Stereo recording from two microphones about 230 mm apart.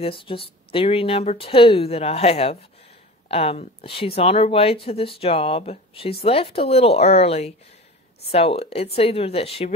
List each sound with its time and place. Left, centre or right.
0.0 s speech: left